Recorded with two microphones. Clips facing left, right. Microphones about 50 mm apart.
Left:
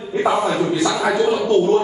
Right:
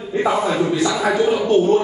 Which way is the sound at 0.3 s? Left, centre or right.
Centre.